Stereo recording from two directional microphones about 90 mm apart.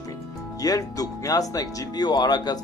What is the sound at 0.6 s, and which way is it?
Speech, 40° left (ahead or behind).